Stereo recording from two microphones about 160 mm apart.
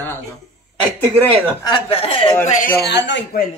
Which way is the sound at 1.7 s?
35° left (ahead or behind).